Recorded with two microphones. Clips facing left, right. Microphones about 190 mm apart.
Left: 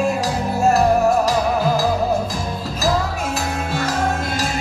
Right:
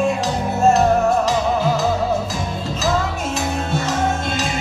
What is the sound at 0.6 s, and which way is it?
Music, 25° right (ahead or behind).